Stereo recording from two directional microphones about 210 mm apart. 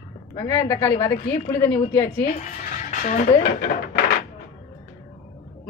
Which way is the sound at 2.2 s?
35° left (ahead or behind).